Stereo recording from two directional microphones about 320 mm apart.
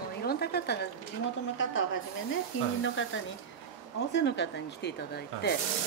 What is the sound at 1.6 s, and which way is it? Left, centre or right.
Speech, left.